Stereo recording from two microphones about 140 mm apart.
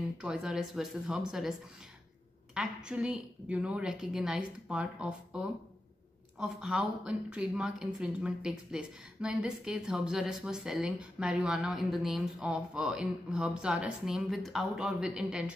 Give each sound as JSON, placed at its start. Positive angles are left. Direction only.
{"t": 0.2, "sound": "a woman's voice", "side_deg": -5}
{"t": 2.5, "sound": "a woman's voice", "side_deg": -5}